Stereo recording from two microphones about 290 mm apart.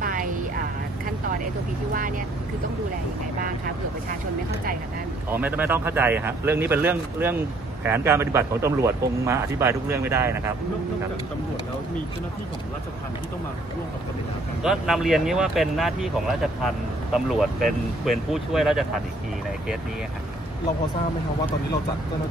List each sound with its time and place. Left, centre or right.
0.0 s vehicle: right
5.3 s speech: centre
14.6 s speech: centre